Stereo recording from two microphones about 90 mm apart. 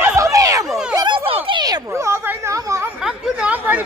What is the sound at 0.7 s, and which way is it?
Speech, 5° right (ahead or behind).